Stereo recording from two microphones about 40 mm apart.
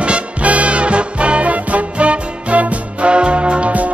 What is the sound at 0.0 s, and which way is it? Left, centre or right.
Music, right.